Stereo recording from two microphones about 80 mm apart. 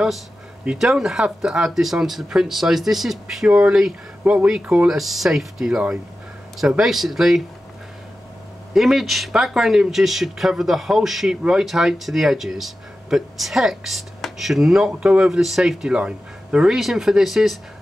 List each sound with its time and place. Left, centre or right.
0.7 s speech: centre
3.4 s speech: centre
8.7 s speech: centre